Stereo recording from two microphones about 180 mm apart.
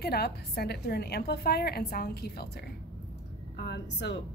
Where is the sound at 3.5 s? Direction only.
70° left (ahead or behind).